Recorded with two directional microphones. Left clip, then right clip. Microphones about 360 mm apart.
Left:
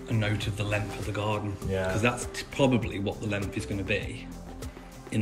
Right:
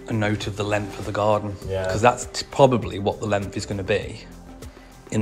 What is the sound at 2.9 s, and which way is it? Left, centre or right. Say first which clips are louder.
Speech: right 9 dB; right.